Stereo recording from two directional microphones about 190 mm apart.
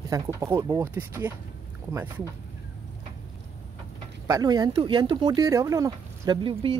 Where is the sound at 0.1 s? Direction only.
15° right (ahead or behind).